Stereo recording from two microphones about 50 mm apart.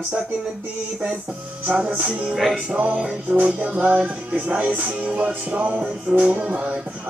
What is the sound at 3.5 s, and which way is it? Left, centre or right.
Speech, right.